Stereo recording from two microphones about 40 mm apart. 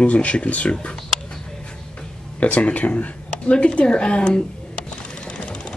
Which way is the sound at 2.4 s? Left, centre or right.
Left.